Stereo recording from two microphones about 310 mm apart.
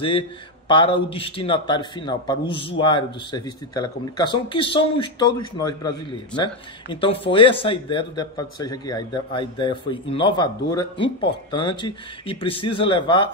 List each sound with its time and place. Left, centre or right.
0.7 s a man's voice: centre